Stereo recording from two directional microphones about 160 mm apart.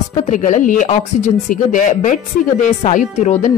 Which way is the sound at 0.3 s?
50° left (ahead or behind).